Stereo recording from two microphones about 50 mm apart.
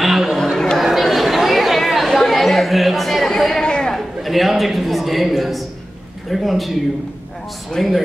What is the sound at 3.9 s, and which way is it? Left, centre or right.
A woman's voice, centre.